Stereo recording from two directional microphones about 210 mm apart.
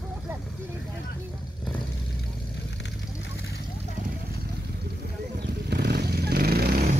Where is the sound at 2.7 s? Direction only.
55° left (ahead or behind).